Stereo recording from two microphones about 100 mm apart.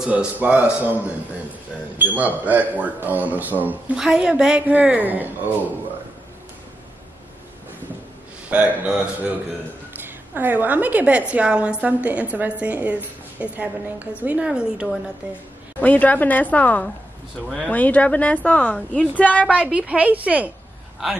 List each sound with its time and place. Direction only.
0.0 s a woman's voice: 10° right (ahead or behind)
3.9 s a woman's voice: 5° right (ahead or behind)
8.5 s a woman's voice: 15° right (ahead or behind)
15.8 s a woman's voice: 15° left (ahead or behind)
19.4 s a woman's voice: 10° right (ahead or behind)